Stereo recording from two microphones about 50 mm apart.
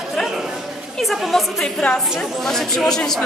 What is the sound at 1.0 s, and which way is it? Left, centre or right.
A woman's voice, centre.